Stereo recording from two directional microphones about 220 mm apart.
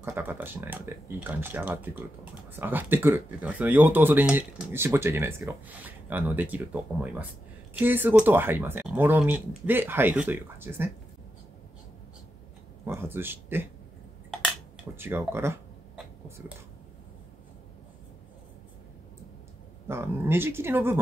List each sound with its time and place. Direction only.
0.0 s speech: 10° right (ahead or behind)
12.8 s speech: 10° right (ahead or behind)
15.0 s speech: 10° right (ahead or behind)
19.9 s speech: 10° right (ahead or behind)